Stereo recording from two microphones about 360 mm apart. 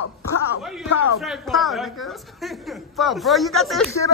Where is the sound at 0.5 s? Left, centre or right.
Left.